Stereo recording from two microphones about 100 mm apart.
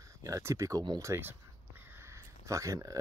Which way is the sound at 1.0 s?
25° right (ahead or behind).